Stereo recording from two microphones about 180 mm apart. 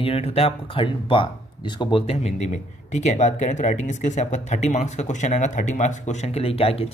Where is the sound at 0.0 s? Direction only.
35° left (ahead or behind).